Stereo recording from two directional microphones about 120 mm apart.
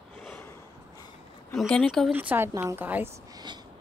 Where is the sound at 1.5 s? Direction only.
5° left (ahead or behind).